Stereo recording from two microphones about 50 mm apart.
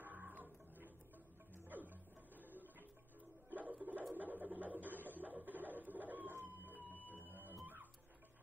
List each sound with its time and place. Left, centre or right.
0.0 s a sound: right
1.7 s music: right
3.4 s a sound: right
6.3 s printer: right
6.7 s music: left
7.6 s music: right